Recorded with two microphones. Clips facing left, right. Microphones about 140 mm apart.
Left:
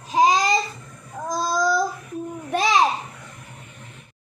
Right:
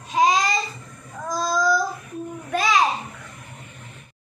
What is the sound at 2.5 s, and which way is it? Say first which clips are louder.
Babbling: left 1 dB; 25° left (ahead or behind).